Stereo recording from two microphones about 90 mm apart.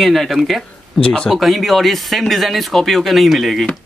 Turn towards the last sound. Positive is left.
turn(degrees=0)  # may be behind; listen again after turning